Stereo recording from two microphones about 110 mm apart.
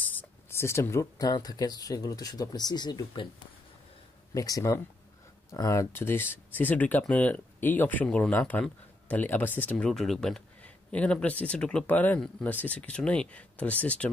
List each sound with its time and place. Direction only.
0.0 s speech: 15° left (ahead or behind); by 3.2 s 40° left (ahead or behind)
4.3 s speech: 35° left (ahead or behind); by 14.1 s 10° left (ahead or behind)